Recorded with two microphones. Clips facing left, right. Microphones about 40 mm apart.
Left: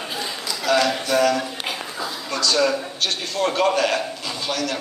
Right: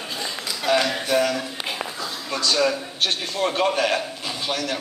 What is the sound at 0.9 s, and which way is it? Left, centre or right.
Speech, centre.